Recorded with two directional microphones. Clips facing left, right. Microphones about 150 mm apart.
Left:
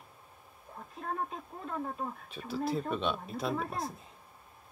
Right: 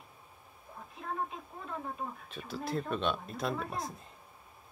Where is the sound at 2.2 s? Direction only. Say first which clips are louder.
Left 4 dB; centre (ahead or behind).